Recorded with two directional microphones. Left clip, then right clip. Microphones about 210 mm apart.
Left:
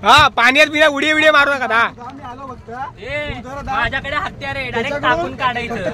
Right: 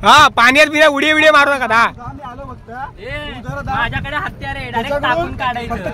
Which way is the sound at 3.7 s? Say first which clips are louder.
Left 1 dB; 25° left (ahead or behind).